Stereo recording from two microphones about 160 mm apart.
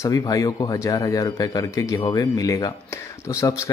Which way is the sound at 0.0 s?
20° left (ahead or behind).